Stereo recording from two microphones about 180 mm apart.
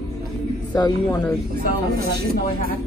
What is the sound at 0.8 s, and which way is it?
Speech, 20° left (ahead or behind).